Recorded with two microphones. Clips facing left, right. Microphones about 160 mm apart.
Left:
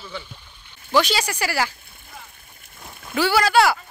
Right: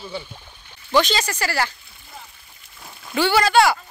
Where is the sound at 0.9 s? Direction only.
10° left (ahead or behind).